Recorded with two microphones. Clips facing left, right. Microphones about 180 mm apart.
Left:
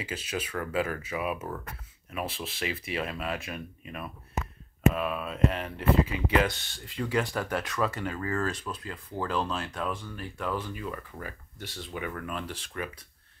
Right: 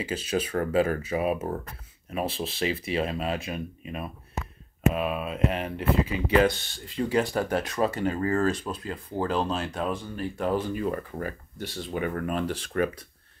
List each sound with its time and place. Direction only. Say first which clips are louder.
0.0 s speech: right 6 dB; 35° right (ahead or behind); by 6.1 s 20° right (ahead or behind)
7.0 s speech: right 4 dB; 30° right (ahead or behind); by 13.0 s 45° right (ahead or behind)